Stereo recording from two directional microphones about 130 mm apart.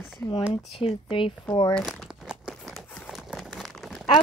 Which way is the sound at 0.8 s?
45° left (ahead or behind).